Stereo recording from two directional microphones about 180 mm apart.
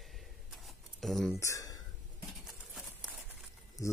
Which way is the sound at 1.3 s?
15° left (ahead or behind).